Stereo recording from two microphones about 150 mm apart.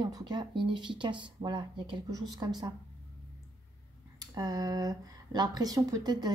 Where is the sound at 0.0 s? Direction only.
25° right (ahead or behind).